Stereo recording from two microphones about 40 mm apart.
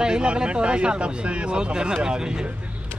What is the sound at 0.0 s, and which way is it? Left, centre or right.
Speech, right.